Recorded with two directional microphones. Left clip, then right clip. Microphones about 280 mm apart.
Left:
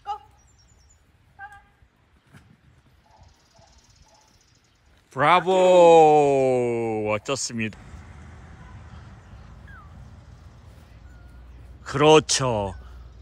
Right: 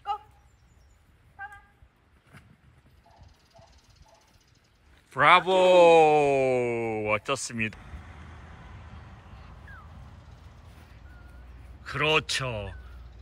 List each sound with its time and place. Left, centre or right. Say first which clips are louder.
5.1 s speech: left 1 dB; centre
7.8 s vehicle: even; right
11.8 s speech: left 9 dB; centre